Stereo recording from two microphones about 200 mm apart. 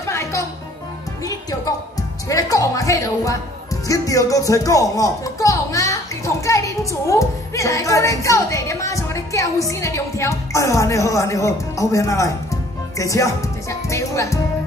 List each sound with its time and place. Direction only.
0.0 s music: 15° left (ahead or behind)
1.2 s speech: 20° left (ahead or behind)